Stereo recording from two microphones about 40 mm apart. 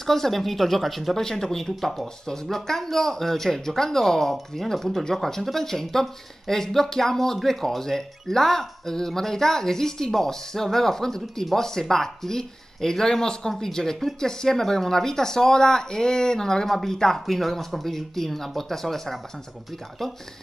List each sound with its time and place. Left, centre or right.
0.0 s speech: centre
1.2 s speech: centre